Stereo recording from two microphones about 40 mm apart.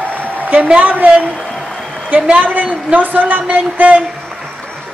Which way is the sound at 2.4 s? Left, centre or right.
Right.